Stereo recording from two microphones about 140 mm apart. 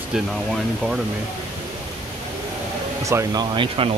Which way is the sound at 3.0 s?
20° right (ahead or behind).